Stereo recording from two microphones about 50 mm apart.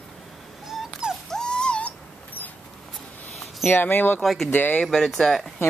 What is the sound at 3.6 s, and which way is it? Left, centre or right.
Speech, left.